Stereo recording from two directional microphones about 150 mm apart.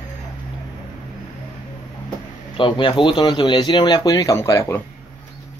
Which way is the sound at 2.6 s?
35° left (ahead or behind).